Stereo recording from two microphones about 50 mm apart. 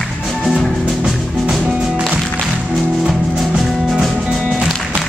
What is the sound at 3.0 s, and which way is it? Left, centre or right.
Music, centre.